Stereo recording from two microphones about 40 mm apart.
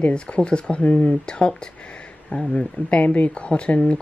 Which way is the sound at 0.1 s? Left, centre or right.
Left.